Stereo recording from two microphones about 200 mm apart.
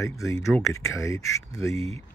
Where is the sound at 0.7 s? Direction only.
15° left (ahead or behind).